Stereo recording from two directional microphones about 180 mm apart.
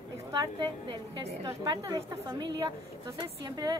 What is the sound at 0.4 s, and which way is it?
A woman's voice, 25° right (ahead or behind).